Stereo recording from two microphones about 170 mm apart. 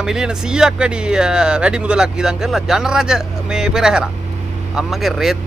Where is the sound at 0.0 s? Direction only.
5° right (ahead or behind).